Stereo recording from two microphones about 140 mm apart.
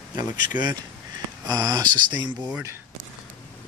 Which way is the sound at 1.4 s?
30° right (ahead or behind).